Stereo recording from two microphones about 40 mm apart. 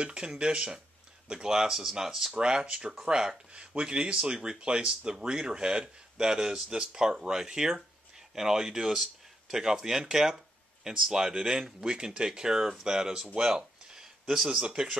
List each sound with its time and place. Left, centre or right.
0.0 s speech: right
2.3 s speech: right
13.4 s a sound: centre
14.6 s speech: right